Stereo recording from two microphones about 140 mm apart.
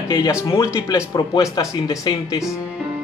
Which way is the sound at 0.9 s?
25° left (ahead or behind).